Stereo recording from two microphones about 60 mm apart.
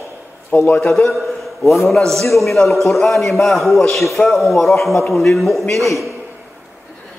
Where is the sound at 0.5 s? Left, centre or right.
Left.